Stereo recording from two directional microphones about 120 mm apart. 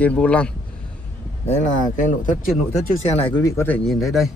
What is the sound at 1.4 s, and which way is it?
Speech, 75° left (ahead or behind).